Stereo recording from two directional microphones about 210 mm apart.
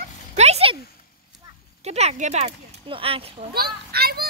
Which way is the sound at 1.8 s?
30° right (ahead or behind).